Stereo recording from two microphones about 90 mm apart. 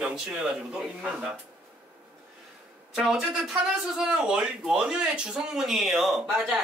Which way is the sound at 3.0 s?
10° right (ahead or behind).